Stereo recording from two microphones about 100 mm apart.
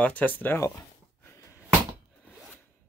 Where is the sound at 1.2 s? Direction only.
25° left (ahead or behind).